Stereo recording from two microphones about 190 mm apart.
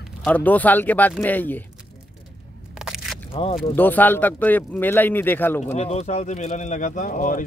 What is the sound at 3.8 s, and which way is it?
Speech, 10° left (ahead or behind).